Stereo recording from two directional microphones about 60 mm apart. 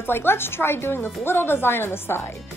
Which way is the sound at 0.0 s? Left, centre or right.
Left.